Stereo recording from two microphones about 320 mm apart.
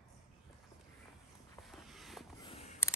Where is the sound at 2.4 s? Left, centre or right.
Centre.